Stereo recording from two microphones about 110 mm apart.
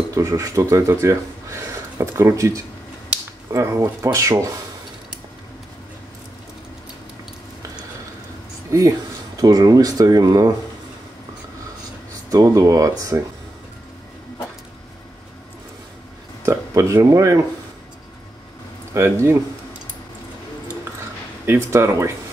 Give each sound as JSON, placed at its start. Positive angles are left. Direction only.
{"t": 0.1, "sound": "speech", "side_deg": -30}
{"t": 9.4, "sound": "speech", "side_deg": -35}
{"t": 12.3, "sound": "speech", "side_deg": -30}
{"t": 16.4, "sound": "speech", "side_deg": -25}
{"t": 18.9, "sound": "speech", "side_deg": -25}
{"t": 21.5, "sound": "speech", "side_deg": -25}